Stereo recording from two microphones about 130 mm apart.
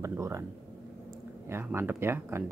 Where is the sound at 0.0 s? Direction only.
25° right (ahead or behind).